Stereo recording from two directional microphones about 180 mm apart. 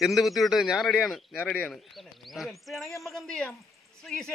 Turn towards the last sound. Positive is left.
turn(degrees=0)  # may be behind; listen again after turning